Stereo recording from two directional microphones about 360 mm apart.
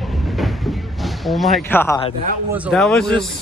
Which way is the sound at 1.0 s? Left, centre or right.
Centre.